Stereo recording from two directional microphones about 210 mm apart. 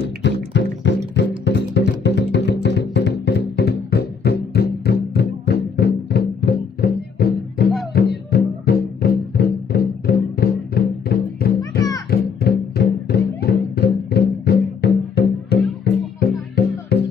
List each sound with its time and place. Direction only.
0.2 s music: 55° left (ahead or behind)